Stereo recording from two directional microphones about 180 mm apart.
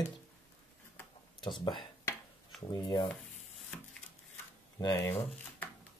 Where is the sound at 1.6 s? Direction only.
25° left (ahead or behind).